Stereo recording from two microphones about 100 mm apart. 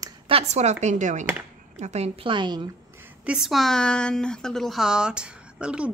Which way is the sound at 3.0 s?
10° right (ahead or behind).